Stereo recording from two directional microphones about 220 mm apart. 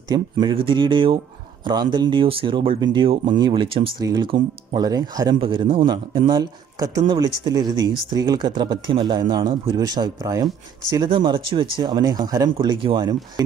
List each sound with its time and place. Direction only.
0.1 s speech: 20° right (ahead or behind)